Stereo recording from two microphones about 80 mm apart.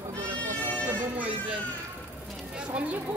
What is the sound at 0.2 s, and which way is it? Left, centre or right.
Goat, right.